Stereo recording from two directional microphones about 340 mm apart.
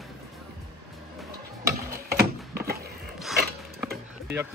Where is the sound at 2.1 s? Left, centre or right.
Right.